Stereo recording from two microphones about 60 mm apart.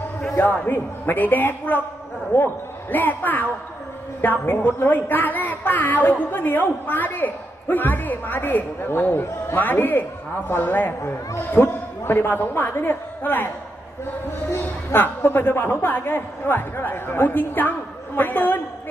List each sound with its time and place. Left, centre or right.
0.4 s a woman's voice: left
14.6 s a woman's voice: left